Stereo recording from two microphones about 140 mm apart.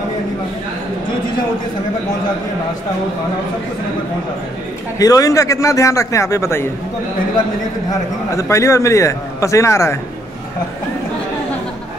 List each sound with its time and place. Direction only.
4.9 s a man's voice: 25° left (ahead or behind)
8.4 s a man's voice: 20° left (ahead or behind)